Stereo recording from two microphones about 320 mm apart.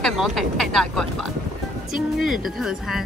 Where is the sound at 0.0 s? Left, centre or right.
Centre.